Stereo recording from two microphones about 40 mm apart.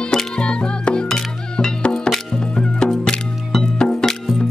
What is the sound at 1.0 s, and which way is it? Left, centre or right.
Music, centre.